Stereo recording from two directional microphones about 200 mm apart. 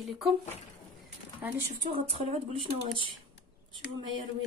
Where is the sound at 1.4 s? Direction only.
10° right (ahead or behind).